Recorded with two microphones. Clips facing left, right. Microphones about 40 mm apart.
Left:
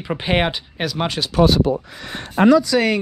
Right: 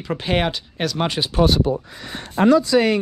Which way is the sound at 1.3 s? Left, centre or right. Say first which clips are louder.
Left 4 dB; left.